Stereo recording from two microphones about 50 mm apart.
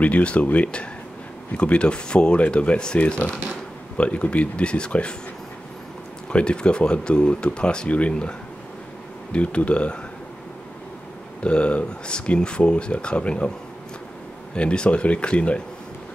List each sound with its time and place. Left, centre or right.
0.0 s speech: left
6.3 s speech: centre
11.4 s speech: left
14.5 s speech: centre